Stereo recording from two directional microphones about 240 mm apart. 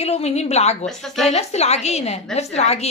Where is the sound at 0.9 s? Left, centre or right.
Centre.